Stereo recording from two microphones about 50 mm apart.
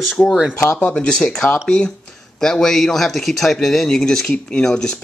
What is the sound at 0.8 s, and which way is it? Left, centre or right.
Speech, left.